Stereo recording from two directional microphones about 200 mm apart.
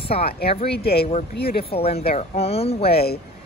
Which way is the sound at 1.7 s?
30° left (ahead or behind).